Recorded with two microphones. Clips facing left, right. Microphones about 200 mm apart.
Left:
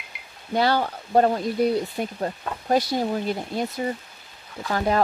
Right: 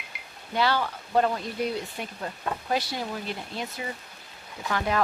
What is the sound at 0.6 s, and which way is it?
Speech, 45° left (ahead or behind).